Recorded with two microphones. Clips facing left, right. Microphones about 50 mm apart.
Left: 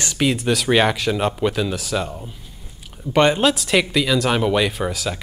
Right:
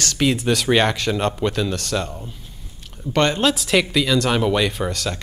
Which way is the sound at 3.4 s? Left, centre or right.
Centre.